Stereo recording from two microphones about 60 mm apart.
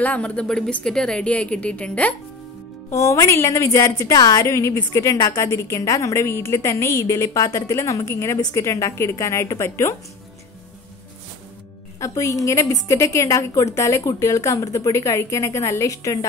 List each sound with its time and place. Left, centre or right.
0.0 s a woman's voice: left
0.8 s a woman's voice: centre
2.9 s a woman's voice: left
3.6 s a woman's voice: left
4.9 s a woman's voice: left
5.4 s a woman's voice: left
12.0 s a woman's voice: left